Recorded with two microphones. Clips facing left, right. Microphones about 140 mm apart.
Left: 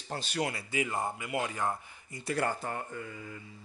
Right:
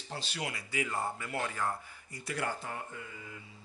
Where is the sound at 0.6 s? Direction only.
25° left (ahead or behind).